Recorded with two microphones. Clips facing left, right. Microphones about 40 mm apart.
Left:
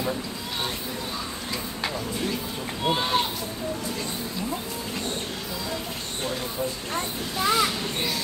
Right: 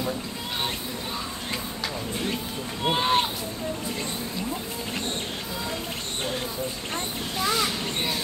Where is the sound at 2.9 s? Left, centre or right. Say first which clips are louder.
Right 2 dB; right.